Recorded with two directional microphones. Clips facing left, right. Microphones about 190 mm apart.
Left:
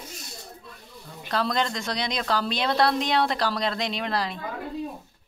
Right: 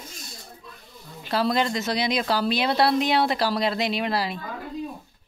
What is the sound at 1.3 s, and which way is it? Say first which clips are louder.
A woman's voice: right 3 dB; 5° right (ahead or behind).